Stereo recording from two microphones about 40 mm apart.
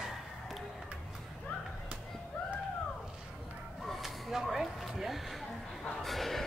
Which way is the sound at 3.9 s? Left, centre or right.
Centre.